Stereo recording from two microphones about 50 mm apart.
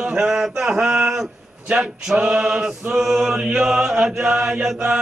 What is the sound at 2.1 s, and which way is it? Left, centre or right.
Speech, right.